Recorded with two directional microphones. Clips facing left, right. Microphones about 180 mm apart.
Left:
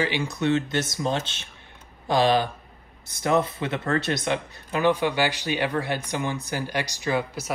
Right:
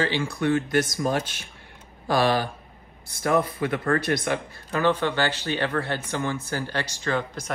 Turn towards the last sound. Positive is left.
turn(degrees=10)  # may be behind; listen again after turning